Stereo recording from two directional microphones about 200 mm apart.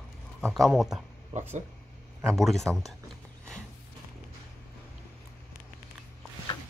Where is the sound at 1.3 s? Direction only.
35° right (ahead or behind).